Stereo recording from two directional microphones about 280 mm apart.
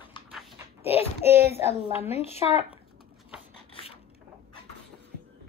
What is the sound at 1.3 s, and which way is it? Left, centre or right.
Speech, centre.